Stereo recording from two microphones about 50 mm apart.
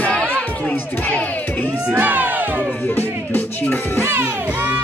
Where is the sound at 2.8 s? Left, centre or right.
Left.